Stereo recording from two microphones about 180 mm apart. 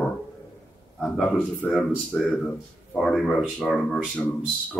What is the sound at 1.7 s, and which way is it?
Speech, 5° left (ahead or behind).